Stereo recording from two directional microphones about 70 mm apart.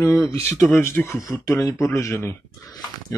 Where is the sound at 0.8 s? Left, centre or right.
Left.